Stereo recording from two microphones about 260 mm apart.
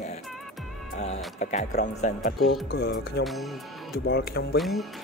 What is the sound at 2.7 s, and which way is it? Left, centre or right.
Speech, left.